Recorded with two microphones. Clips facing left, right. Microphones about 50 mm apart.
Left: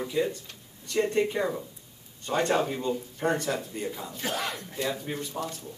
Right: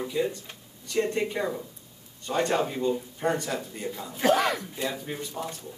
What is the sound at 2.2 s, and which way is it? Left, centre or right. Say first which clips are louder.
Speech: even; left.